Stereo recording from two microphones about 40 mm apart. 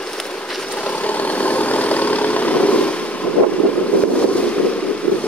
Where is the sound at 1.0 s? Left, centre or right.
Left.